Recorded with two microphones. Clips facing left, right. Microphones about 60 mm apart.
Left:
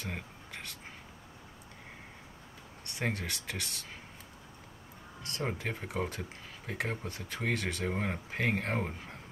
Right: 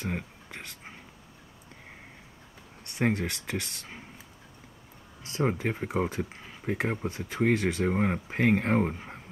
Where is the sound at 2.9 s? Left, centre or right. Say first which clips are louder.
Right 7 dB; right.